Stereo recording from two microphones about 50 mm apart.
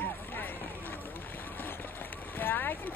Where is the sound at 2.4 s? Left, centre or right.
Left.